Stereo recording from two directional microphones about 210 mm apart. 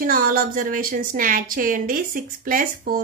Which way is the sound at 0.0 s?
45° right (ahead or behind).